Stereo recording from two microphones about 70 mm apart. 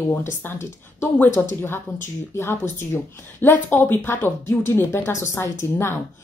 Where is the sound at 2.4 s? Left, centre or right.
Left.